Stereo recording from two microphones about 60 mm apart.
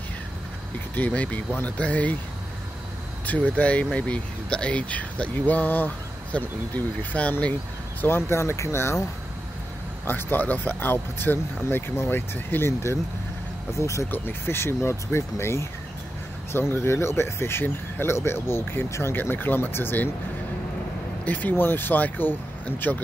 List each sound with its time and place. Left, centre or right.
0.9 s speech: left
3.3 s speech: left
8.0 s speech: left
10.0 s speech: left
13.7 s speech: left
14.1 s speech: left
19.1 s speech: left
21.3 s speech: left